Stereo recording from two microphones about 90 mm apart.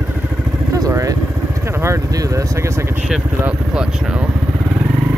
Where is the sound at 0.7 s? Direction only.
40° right (ahead or behind).